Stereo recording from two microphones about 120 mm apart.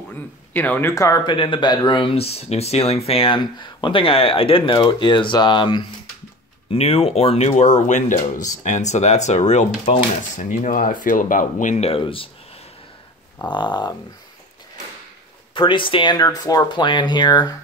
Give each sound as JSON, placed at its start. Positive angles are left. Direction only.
{"t": 0.5, "sound": "speech", "side_deg": 15}
{"t": 1.2, "sound": "speech", "side_deg": 45}
{"t": 6.7, "sound": "speech", "side_deg": 55}
{"t": 12.0, "sound": "speech", "side_deg": 50}
{"t": 13.5, "sound": "speech", "side_deg": 40}
{"t": 15.5, "sound": "speech", "side_deg": 45}